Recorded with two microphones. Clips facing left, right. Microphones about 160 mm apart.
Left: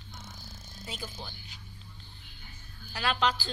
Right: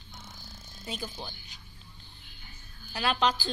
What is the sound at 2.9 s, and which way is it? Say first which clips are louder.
Speech: right 2 dB; 20° right (ahead or behind).